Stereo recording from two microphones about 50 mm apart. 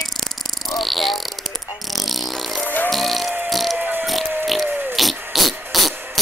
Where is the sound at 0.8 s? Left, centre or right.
Centre.